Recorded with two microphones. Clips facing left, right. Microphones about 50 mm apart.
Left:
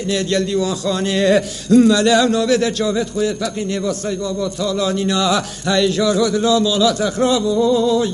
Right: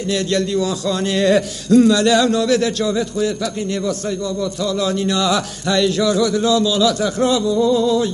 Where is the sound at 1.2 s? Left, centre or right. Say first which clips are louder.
Left 1 dB; centre.